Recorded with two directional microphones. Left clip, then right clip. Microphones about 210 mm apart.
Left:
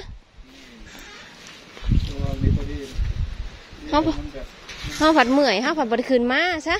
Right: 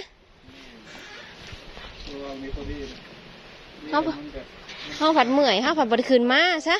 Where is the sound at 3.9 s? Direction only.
35° left (ahead or behind).